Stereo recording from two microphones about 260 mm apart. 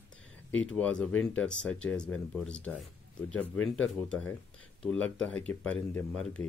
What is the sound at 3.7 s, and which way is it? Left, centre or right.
Speech, centre.